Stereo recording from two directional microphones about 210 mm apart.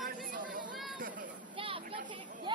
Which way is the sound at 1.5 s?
25° right (ahead or behind).